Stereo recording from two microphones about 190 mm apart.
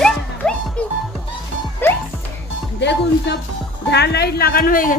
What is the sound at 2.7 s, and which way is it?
A woman's voice, 65° left (ahead or behind).